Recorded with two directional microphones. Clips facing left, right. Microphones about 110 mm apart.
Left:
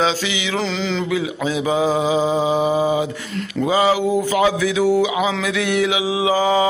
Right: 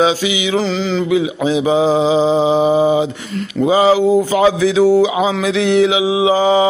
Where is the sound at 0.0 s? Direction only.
15° right (ahead or behind).